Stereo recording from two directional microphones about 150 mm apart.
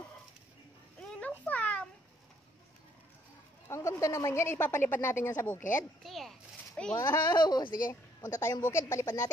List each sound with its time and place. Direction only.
1.0 s a sound: 10° left (ahead or behind)
3.6 s a woman's voice: 20° left (ahead or behind)
6.0 s a child's voice: centre (ahead or behind)
7.0 s a woman's voice: 20° left (ahead or behind)
7.3 s speech: 30° left (ahead or behind)
7.9 s a woman's voice: 15° left (ahead or behind)